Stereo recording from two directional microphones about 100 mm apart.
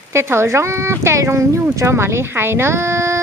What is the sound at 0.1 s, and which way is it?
Speech, 25° right (ahead or behind).